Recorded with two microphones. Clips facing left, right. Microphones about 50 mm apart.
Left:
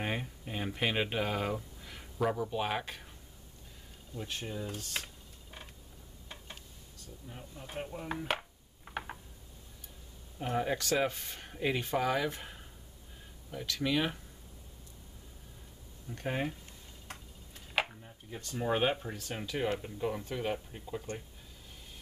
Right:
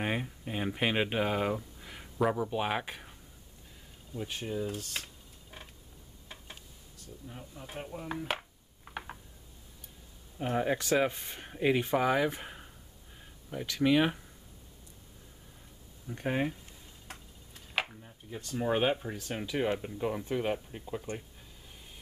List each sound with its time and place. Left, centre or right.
0.0 s speech: centre
4.3 s a sound: centre
10.4 s speech: centre
16.1 s speech: centre